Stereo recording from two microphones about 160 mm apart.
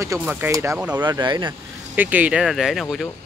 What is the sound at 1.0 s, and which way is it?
Speech, 25° right (ahead or behind).